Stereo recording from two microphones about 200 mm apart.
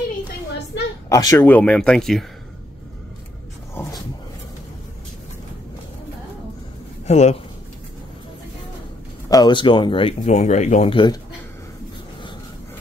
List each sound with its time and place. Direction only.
1.0 s speech: 15° left (ahead or behind)
3.8 s dog: 10° left (ahead or behind)
7.1 s speech: 35° left (ahead or behind)
9.3 s speech: 20° left (ahead or behind)